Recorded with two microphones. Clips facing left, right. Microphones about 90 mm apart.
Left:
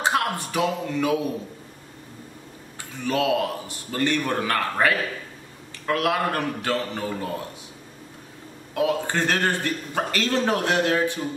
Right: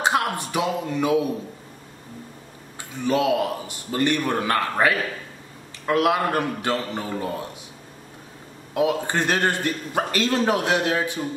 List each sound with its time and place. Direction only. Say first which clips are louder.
0.0 s speech: right 1 dB; 20° right (ahead or behind)
3.1 s a man's voice: right 2 dB; 20° right (ahead or behind)
8.7 s a man's voice: right 1 dB; 15° right (ahead or behind)